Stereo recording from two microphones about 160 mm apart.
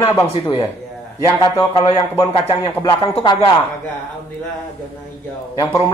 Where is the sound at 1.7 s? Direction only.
25° left (ahead or behind).